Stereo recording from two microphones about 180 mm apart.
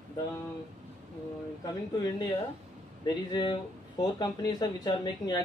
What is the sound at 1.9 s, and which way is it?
Speech, 20° left (ahead or behind).